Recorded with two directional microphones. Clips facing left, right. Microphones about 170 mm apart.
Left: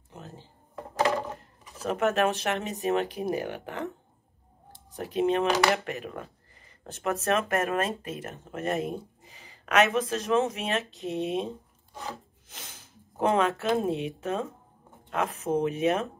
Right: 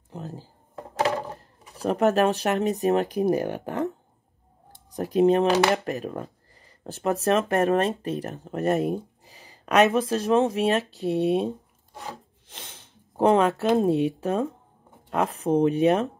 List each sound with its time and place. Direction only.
0.1 s speech: 35° right (ahead or behind)
4.9 s speech: 40° right (ahead or behind)
12.4 s sniff: 30° right (ahead or behind)
13.6 s speech: 35° right (ahead or behind)